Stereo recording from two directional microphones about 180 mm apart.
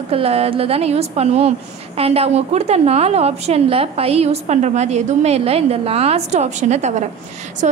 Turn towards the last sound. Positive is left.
turn(degrees=-45)  # may be behind; listen again after turning